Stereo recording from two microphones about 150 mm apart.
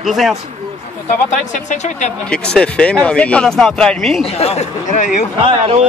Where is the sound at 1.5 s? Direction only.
55° left (ahead or behind).